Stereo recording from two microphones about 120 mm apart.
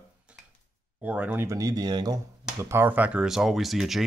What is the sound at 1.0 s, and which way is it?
Speech, 10° right (ahead or behind).